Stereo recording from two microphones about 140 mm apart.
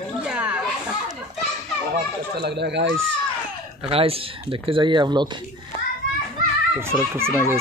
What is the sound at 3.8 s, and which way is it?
Speech, 45° right (ahead or behind).